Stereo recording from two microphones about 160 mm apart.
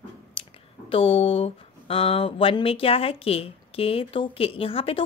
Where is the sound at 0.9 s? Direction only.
35° left (ahead or behind).